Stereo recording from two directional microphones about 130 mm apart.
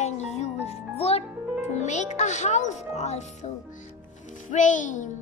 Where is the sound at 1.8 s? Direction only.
65° left (ahead or behind).